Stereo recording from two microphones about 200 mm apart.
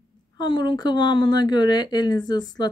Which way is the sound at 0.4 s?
25° left (ahead or behind).